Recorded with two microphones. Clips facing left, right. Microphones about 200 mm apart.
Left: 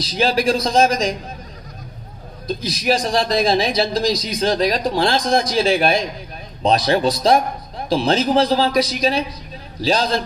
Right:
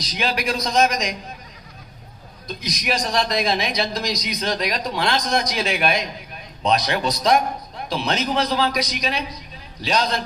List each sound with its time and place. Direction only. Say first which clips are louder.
0.0 s a woman's voice: left 7 dB; 30° left (ahead or behind)
2.4 s a woman's voice: left 7 dB; 30° left (ahead or behind)